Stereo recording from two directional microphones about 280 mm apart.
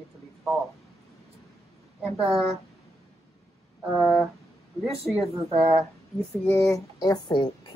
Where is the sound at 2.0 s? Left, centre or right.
Centre.